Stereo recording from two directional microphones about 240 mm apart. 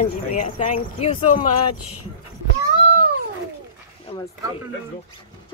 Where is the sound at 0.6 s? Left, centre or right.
Left.